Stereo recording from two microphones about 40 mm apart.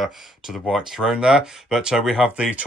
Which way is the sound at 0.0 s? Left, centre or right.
Centre.